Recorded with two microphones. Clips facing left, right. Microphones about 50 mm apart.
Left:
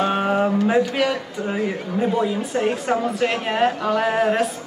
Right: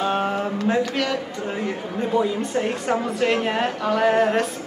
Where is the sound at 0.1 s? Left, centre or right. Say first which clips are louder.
Left 4 dB; centre.